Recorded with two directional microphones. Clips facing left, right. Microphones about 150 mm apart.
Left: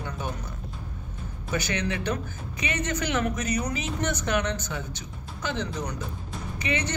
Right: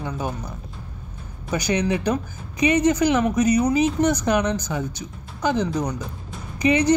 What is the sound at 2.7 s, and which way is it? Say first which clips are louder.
A woman's voice: right 9 dB; 35° right (ahead or behind).